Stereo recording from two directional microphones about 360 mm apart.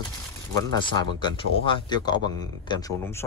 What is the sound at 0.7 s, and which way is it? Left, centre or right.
Speech, right.